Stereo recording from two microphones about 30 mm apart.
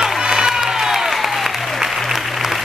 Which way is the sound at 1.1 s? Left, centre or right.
Centre.